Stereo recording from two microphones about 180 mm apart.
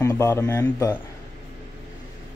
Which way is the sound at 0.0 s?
15° left (ahead or behind).